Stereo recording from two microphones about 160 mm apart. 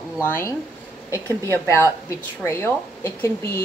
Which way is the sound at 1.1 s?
20° right (ahead or behind).